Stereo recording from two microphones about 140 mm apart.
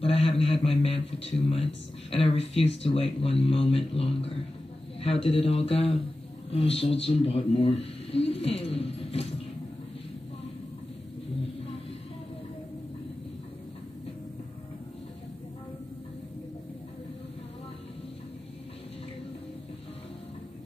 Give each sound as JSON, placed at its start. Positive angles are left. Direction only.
{"t": 0.0, "sound": "a sound", "side_deg": 45}
{"t": 0.4, "sound": "a man's voice", "side_deg": 45}
{"t": 5.0, "sound": "a man's voice", "side_deg": 45}